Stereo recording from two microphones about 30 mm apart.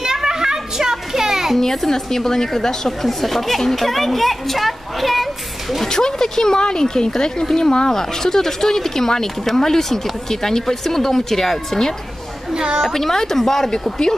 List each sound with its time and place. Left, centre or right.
0.0 s a sound: centre
1.6 s speech: centre
5.9 s speech: centre
12.5 s a woman's voice: right
12.9 s speech: centre